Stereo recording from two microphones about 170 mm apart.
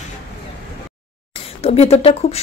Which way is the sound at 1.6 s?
40° left (ahead or behind).